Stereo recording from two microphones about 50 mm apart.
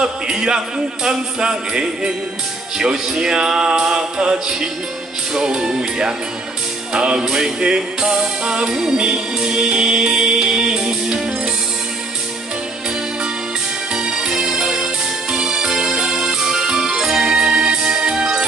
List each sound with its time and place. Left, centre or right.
0.0 s music: centre
13.9 s music: centre